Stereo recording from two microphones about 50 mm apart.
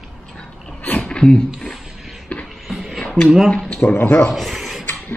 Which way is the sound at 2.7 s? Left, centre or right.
Centre.